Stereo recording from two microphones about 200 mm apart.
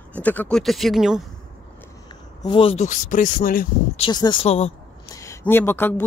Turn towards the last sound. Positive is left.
turn(degrees=10)  # may be behind; listen again after turning